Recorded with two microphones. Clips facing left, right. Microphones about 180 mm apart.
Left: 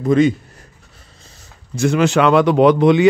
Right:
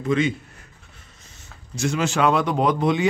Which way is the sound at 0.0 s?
40° left (ahead or behind).